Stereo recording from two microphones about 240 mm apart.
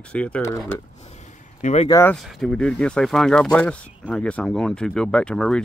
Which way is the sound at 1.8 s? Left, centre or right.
Centre.